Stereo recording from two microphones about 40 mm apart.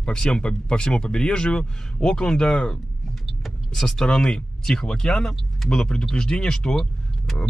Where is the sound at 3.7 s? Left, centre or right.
Centre.